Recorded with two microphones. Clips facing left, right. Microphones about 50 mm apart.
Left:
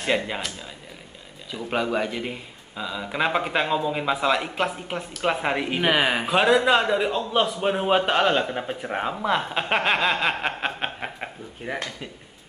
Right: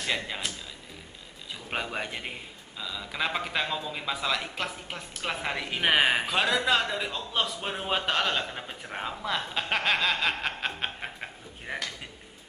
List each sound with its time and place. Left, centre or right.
0.0 s a man's voice: left
1.5 s speech: centre
2.7 s a man's voice: left
5.8 s speech: centre
6.2 s a man's voice: centre
11.7 s speech: centre